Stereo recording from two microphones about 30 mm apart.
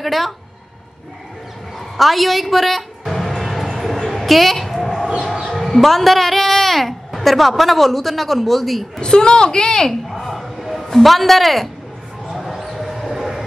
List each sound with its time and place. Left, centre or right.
0.0 s speech: centre
2.0 s music: centre
3.7 s a sound: centre
5.7 s a woman's voice: centre
9.0 s a woman's voice: left
9.8 s a sound: centre
12.3 s basketball bounce: centre
13.2 s train: centre